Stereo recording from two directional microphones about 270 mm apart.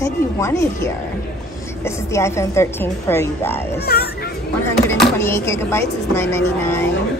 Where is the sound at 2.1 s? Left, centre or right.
Centre.